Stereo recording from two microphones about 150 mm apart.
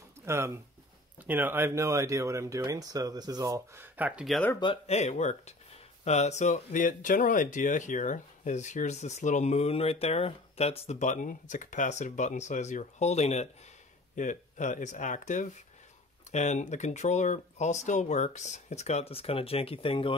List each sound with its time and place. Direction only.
0.2 s a sound: 20° right (ahead or behind)
1.2 s speech: 10° right (ahead or behind)
4.8 s speech: 45° left (ahead or behind)
14.1 s speech: 60° left (ahead or behind); by 20.2 s 35° left (ahead or behind)